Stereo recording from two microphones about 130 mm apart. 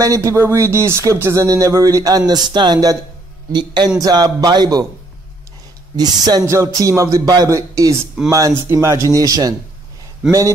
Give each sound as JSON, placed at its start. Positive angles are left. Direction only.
{"t": 0.0, "sound": "a man's voice", "side_deg": -25}
{"t": 5.9, "sound": "speech", "side_deg": -30}